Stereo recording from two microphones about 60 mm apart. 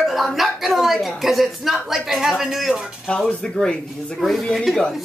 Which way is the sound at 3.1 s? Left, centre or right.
Centre.